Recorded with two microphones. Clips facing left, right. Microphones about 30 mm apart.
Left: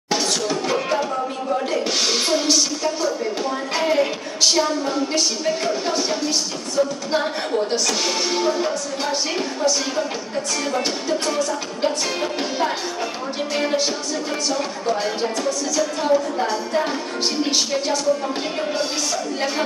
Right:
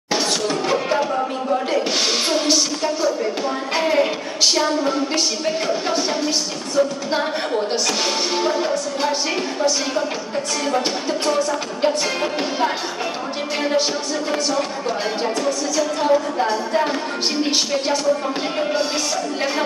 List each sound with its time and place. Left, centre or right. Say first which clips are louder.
0.1 s a sound: right 1 dB; centre
1.7 s speech: right 1 dB; centre
3.4 s speech: even; centre
7.1 s speech: right 1 dB; centre
12.4 s speech: right 1 dB; centre
16.0 s speech: right 2 dB; centre